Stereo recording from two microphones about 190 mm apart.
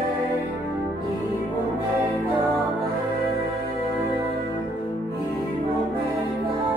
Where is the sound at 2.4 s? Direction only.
Centre (ahead or behind).